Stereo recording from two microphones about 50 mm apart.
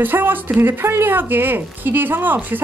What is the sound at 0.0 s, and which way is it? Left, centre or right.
Speech, right.